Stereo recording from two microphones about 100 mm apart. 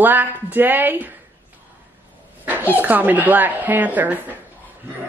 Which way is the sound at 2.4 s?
15° right (ahead or behind).